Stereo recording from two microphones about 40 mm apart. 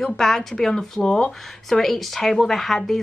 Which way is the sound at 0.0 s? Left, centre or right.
Centre.